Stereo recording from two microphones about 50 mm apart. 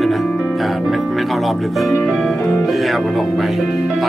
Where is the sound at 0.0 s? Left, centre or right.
Centre.